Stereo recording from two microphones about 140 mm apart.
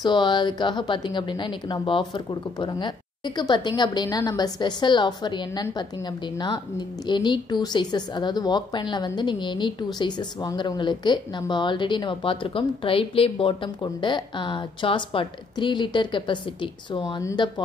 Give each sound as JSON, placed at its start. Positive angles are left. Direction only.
{"t": 0.0, "sound": "a woman's voice", "side_deg": 35}